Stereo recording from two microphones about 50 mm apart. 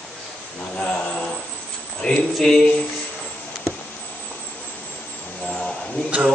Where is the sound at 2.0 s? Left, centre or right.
Left.